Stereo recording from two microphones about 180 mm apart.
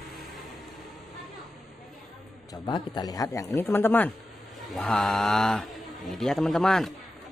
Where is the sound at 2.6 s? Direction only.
25° left (ahead or behind).